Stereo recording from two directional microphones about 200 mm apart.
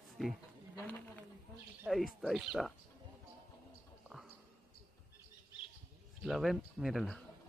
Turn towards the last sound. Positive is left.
turn(degrees=0)  # may be behind; listen again after turning